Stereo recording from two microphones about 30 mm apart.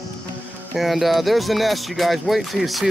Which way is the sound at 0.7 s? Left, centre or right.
Centre.